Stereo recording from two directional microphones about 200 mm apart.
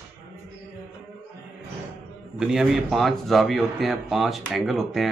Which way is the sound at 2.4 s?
Centre (ahead or behind).